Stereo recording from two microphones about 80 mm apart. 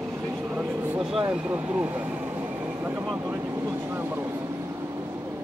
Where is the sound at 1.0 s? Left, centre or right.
Centre.